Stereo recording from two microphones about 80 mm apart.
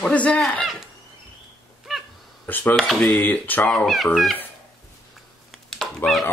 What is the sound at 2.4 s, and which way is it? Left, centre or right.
Speech, left.